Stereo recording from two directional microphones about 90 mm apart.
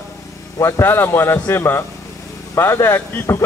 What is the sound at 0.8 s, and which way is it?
Speech, 25° left (ahead or behind).